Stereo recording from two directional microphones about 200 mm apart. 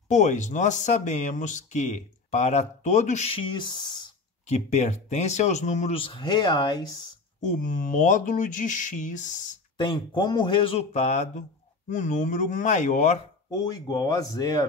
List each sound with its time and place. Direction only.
0.1 s speech: 35° left (ahead or behind)
4.5 s speech: 35° left (ahead or behind)
7.4 s speech: 40° left (ahead or behind)
9.8 s speech: 25° left (ahead or behind)
13.5 s speech: 20° left (ahead or behind)